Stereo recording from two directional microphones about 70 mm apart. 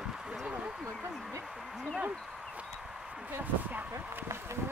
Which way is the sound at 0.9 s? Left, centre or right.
Right.